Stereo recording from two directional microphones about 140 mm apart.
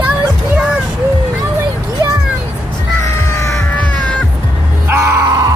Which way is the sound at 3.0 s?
20° left (ahead or behind).